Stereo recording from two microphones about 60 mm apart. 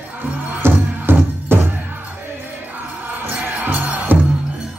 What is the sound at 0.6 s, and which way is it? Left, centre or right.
Music, right.